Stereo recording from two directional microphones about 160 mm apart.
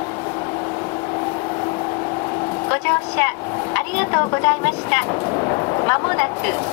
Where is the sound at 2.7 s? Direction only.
10° left (ahead or behind).